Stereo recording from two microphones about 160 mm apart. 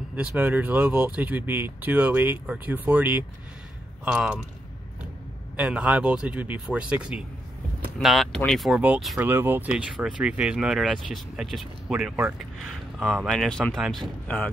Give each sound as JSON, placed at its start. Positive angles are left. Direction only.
{"t": 0.1, "sound": "speech", "side_deg": -10}
{"t": 5.6, "sound": "speech", "side_deg": -10}
{"t": 12.5, "sound": "speech", "side_deg": 0}